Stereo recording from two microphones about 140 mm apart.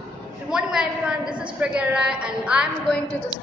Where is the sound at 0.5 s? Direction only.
5° right (ahead or behind).